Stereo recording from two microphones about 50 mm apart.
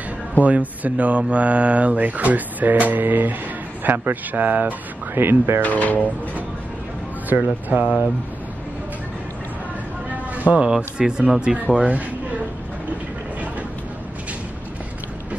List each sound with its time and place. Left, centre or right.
0.4 s speech: right
5.1 s speech: right
5.6 s speech: left
7.3 s speech: right
7.7 s speech: right
10.4 s speech: right